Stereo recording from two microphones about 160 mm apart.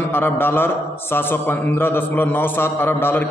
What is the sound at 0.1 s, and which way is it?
A man's voice, 15° left (ahead or behind).